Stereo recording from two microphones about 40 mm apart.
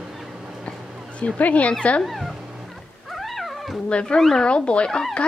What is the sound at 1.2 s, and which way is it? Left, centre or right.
Speech, left.